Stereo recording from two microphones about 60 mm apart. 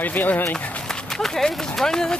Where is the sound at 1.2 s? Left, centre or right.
Centre.